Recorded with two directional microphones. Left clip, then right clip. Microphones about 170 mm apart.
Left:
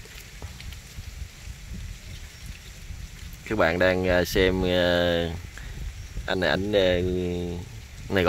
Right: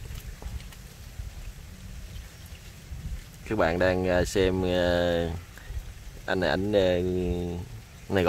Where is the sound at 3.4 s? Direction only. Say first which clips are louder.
Left 3 dB; 5° left (ahead or behind).